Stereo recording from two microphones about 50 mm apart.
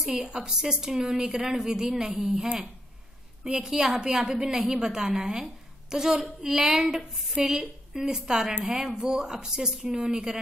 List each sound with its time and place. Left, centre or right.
0.1 s a woman's voice: right
0.4 s a woman's voice: centre